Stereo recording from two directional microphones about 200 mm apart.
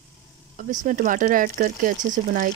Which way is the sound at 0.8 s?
40° right (ahead or behind).